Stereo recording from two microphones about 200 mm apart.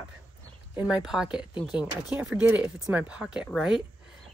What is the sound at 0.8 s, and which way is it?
Speech, 5° right (ahead or behind).